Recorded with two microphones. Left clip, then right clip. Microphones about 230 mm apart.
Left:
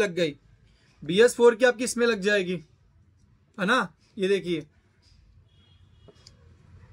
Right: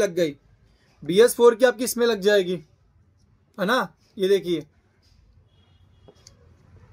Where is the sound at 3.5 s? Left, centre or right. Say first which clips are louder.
Right 1 dB; centre.